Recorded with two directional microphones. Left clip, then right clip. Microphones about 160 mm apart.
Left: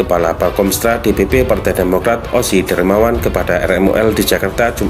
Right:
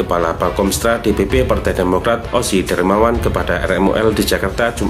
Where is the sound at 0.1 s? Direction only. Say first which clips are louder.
Left 1 dB; 20° left (ahead or behind).